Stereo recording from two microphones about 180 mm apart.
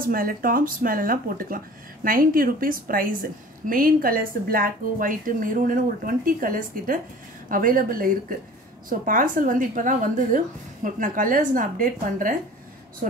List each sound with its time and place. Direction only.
0.0 s a woman's voice: 50° right (ahead or behind)